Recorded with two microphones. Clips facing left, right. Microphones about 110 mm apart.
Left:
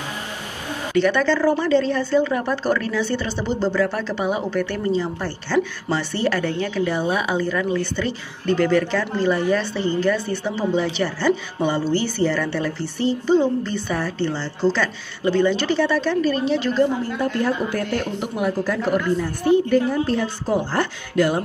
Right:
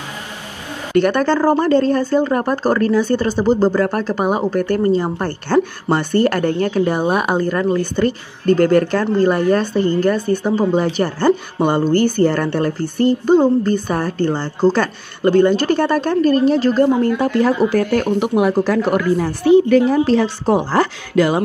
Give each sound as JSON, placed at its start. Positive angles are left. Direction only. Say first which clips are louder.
{"t": 0.9, "sound": "speech", "louder": "right 4 dB", "side_deg": -50}
{"t": 17.0, "sound": "speech", "louder": "right 7 dB", "side_deg": -90}